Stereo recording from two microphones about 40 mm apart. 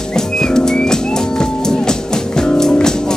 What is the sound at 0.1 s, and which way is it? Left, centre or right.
Music, centre.